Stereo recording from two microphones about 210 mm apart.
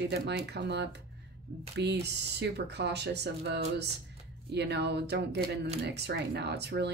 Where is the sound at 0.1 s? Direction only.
50° right (ahead or behind).